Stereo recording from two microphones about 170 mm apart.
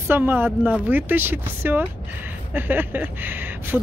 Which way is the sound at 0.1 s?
10° right (ahead or behind).